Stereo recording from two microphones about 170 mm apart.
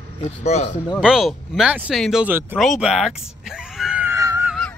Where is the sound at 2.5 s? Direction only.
Centre (ahead or behind); by 4.5 s 15° right (ahead or behind).